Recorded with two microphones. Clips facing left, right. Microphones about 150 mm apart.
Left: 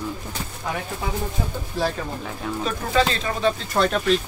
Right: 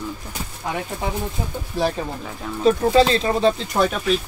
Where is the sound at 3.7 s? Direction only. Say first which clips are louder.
Even; 5° right (ahead or behind).